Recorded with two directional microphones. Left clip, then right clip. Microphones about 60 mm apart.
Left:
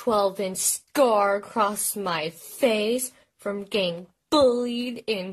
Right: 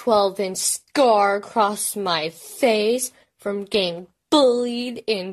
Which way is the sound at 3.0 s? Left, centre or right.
Right.